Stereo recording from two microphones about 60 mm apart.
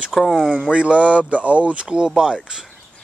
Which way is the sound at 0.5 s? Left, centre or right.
Centre.